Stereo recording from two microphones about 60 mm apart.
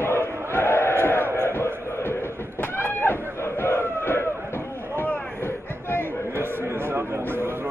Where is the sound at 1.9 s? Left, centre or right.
Left.